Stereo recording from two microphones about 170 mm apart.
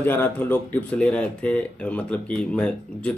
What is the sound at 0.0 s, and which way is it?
Speech, 10° left (ahead or behind).